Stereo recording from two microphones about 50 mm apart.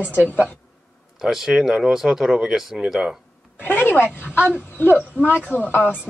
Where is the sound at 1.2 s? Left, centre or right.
Centre.